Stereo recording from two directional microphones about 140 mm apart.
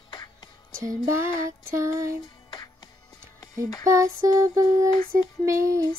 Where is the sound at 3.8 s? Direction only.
20° right (ahead or behind).